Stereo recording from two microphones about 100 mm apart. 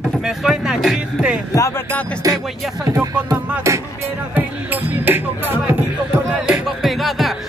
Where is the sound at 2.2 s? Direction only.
35° right (ahead or behind).